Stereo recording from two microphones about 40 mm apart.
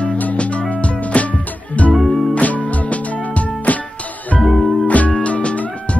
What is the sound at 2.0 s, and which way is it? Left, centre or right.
Music, centre.